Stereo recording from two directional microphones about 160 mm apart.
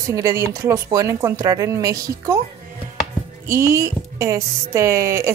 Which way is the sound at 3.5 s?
20° right (ahead or behind).